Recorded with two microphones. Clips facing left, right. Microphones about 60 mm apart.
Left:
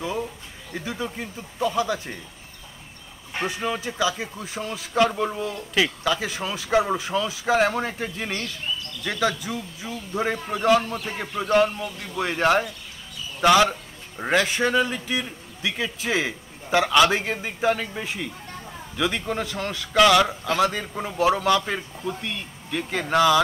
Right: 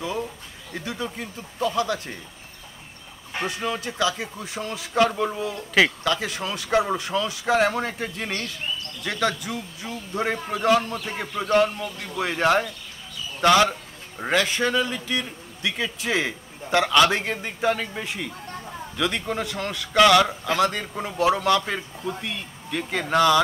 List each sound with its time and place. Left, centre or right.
0.0 s a sound: centre
0.7 s speech: centre
3.3 s a man's voice: centre
13.4 s a sound: centre
14.3 s speech: centre
15.6 s a man's voice: centre